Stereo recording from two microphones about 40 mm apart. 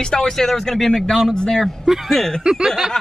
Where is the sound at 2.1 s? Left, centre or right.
Centre.